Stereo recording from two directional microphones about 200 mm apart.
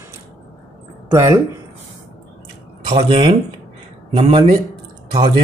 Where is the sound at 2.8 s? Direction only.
30° right (ahead or behind).